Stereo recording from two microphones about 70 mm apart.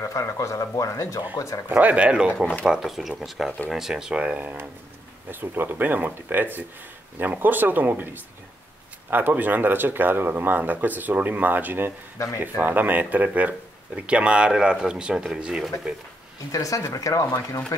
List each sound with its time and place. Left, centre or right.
0.0 s speech: left
1.7 s speech: right
5.3 s speech: right; by 15.7 s centre
16.5 s speech: left